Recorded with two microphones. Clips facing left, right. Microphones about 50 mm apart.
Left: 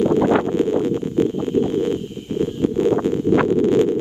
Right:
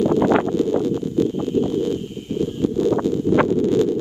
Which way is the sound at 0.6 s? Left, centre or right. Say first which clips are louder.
Left 1 dB; left.